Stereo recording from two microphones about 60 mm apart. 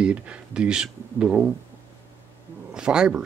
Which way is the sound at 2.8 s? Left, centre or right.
Centre.